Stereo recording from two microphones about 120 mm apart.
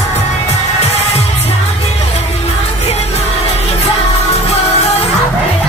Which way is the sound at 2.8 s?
60° left (ahead or behind).